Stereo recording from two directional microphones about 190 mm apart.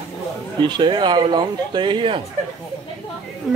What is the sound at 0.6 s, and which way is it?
Speech, 25° right (ahead or behind).